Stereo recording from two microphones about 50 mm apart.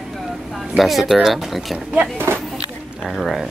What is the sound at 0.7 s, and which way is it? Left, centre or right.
A woman's voice, centre.